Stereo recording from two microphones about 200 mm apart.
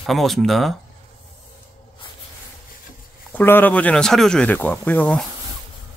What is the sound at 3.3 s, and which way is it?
Speech, 10° left (ahead or behind).